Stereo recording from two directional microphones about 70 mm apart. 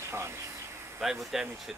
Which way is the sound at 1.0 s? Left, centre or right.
Centre.